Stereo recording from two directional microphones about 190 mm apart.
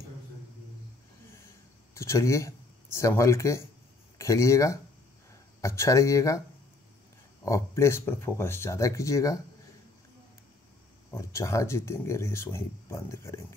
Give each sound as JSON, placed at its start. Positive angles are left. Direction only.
{"t": 2.0, "sound": "speech", "side_deg": 15}
{"t": 7.4, "sound": "speech", "side_deg": 15}
{"t": 11.1, "sound": "speech", "side_deg": 15}